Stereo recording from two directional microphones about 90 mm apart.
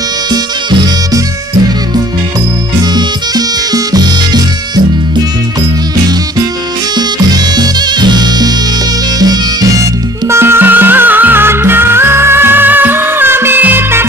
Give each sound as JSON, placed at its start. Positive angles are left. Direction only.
{"t": 0.3, "sound": "music", "side_deg": -50}
{"t": 2.8, "sound": "music", "side_deg": -50}
{"t": 7.0, "sound": "music", "side_deg": -50}
{"t": 10.2, "sound": "music", "side_deg": -30}